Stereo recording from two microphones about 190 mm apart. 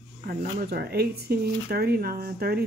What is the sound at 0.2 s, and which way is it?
Speech, 45° right (ahead or behind).